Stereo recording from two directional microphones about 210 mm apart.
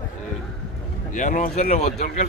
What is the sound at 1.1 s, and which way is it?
Speech, 40° left (ahead or behind).